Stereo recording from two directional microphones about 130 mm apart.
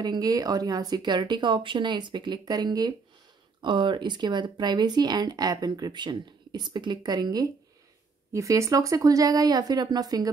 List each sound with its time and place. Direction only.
0.0 s speech: 30° right (ahead or behind)